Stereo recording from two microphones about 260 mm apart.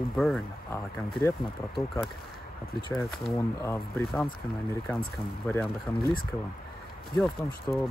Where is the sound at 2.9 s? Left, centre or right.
Centre.